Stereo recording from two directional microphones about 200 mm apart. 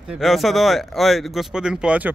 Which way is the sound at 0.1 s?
Centre (ahead or behind).